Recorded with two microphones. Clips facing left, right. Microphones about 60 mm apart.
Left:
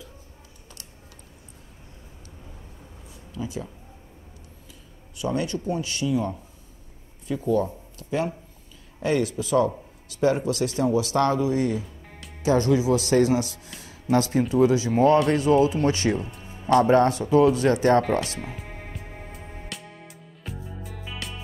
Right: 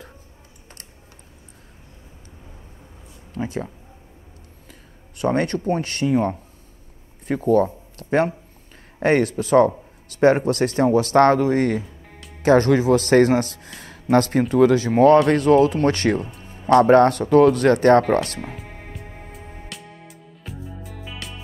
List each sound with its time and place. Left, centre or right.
3.3 s a man's voice: right
5.1 s a man's voice: right
11.8 s music: centre
12.4 s a man's voice: right
16.3 s music: centre
16.8 s a man's voice: right
18.4 s music: centre